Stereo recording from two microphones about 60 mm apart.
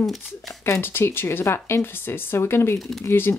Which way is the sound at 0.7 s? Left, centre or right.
Left.